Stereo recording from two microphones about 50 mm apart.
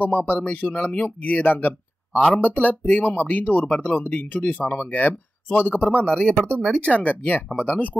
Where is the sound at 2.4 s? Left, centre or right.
Left.